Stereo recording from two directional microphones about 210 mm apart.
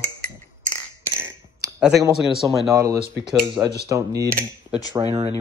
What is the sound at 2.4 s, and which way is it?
Speech, 15° right (ahead or behind).